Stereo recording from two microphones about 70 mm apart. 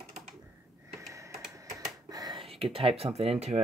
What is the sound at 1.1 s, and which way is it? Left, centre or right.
Computer keyboard, right.